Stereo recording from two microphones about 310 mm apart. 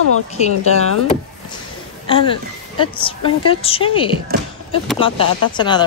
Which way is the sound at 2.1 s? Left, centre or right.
Centre.